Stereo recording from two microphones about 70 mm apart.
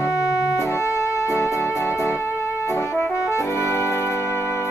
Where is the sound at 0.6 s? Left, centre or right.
Left.